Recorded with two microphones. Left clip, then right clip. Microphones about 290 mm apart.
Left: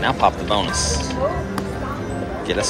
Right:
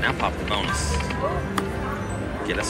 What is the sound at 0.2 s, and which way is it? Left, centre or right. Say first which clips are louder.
Speech: left 7 dB; centre.